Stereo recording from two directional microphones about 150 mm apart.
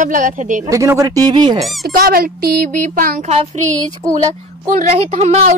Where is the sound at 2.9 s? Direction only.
70° right (ahead or behind).